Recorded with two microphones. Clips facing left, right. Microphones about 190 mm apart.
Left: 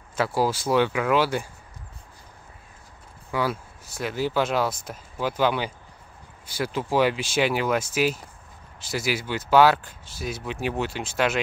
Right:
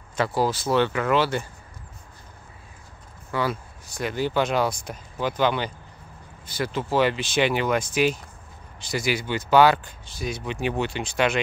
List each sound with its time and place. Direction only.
0.1 s speech: 5° left (ahead or behind)
3.3 s speech: 5° left (ahead or behind)